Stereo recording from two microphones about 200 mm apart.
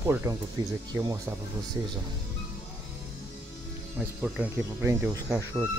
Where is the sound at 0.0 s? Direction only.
15° right (ahead or behind).